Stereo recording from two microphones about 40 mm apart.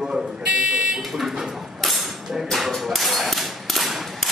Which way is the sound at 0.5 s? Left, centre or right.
Right.